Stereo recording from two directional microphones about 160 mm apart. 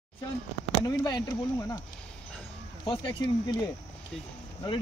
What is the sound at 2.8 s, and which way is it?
Speech, 30° left (ahead or behind).